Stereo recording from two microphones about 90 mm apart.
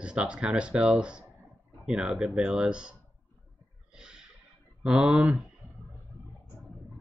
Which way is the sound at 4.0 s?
10° right (ahead or behind).